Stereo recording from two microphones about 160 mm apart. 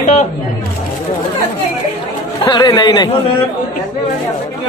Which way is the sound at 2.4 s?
25° left (ahead or behind).